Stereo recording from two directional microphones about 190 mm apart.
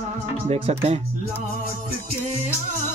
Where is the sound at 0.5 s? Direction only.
35° right (ahead or behind).